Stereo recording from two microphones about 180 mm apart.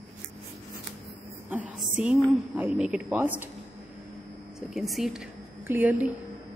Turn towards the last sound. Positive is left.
turn(degrees=-10)  # may be behind; listen again after turning